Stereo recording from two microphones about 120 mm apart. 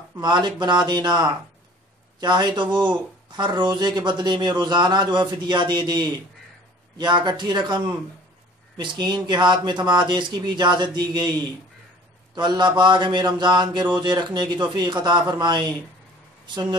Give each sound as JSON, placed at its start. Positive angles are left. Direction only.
{"t": 0.2, "sound": "mantra", "side_deg": -40}
{"t": 12.4, "sound": "mantra", "side_deg": -35}